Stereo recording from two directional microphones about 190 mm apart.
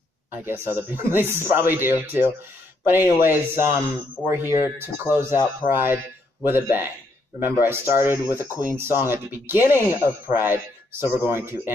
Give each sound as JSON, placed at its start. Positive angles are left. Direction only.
{"t": 0.3, "sound": "speech", "side_deg": -10}
{"t": 5.3, "sound": "speech", "side_deg": 25}
{"t": 5.7, "sound": "speech", "side_deg": -10}